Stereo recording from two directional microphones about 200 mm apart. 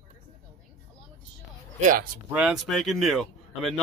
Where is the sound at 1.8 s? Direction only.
40° right (ahead or behind).